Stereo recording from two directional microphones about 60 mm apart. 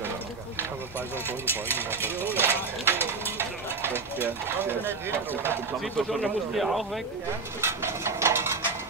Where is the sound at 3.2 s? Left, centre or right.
Right.